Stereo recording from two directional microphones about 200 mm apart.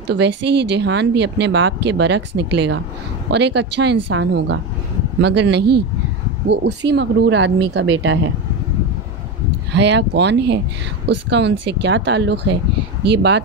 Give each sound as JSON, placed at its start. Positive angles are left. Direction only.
{"t": 0.0, "sound": "speech", "side_deg": -60}
{"t": 9.7, "sound": "speech", "side_deg": -60}